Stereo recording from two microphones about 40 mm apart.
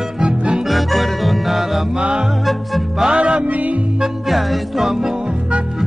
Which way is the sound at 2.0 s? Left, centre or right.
Centre.